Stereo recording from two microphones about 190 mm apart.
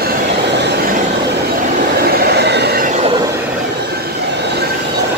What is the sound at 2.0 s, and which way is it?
Train, 55° right (ahead or behind).